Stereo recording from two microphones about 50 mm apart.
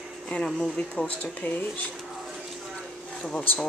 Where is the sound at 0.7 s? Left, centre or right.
Left.